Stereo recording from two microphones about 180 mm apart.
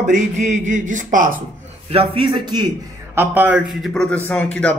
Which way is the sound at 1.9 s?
30° right (ahead or behind).